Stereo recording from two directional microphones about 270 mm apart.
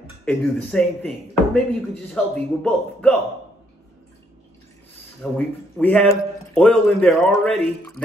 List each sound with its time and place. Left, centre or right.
0.2 s speech: centre
5.2 s speech: centre